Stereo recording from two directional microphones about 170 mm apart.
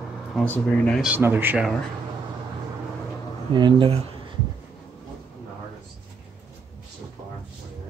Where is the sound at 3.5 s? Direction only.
30° right (ahead or behind).